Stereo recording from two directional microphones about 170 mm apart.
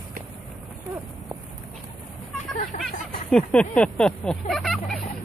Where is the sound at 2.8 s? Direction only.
5° left (ahead or behind).